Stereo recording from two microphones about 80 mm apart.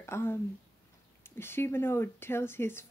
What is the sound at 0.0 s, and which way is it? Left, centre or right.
Speech, left.